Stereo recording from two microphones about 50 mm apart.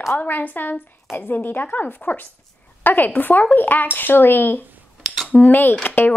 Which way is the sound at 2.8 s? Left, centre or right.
Left.